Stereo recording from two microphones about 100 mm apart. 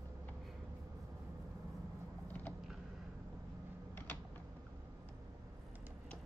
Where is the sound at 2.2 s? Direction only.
20° left (ahead or behind).